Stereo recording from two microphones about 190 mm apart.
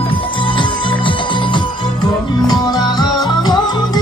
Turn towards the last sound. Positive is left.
turn(degrees=20)  # may be behind; listen again after turning